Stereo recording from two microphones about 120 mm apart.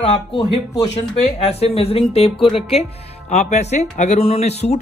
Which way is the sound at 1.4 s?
60° left (ahead or behind).